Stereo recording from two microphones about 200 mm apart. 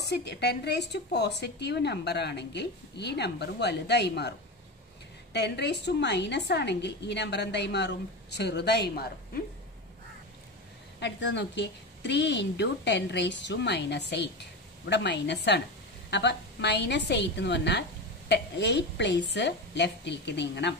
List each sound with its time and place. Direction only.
0.0 s a woman's voice: 55° left (ahead or behind)
11.0 s a woman's voice: 60° left (ahead or behind)